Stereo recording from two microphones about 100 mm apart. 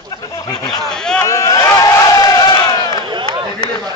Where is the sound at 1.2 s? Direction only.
30° left (ahead or behind).